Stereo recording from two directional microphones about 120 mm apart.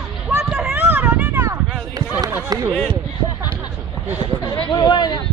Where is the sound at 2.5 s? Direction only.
35° right (ahead or behind).